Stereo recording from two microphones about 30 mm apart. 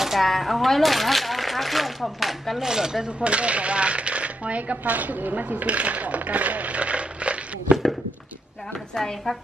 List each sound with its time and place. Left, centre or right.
0.2 s speech: centre
2.6 s speech: centre
3.2 s speech: right
4.9 s speech: right
8.9 s speech: centre